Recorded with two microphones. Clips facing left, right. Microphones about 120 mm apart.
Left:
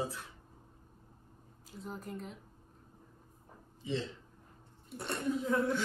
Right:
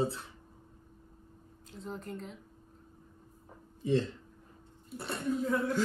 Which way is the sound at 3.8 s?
45° right (ahead or behind).